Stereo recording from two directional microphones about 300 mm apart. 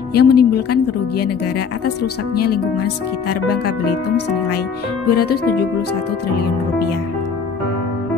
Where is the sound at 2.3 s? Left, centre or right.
Left.